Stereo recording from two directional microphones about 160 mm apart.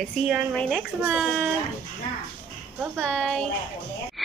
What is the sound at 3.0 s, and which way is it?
Speech, 5° left (ahead or behind).